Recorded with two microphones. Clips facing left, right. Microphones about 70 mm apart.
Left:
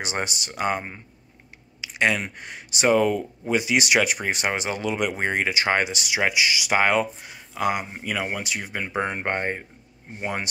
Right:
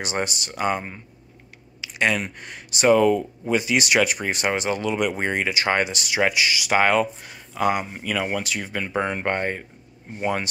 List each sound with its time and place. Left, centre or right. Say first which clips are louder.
0.0 s speech: right 2 dB; left
1.8 s a sound: even; left
2.3 s speech: even; left
7.8 s speech: right 2 dB; left